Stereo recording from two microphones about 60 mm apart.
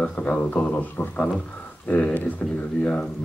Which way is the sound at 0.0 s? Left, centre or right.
Centre.